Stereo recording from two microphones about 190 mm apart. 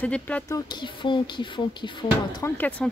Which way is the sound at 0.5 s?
20° left (ahead or behind).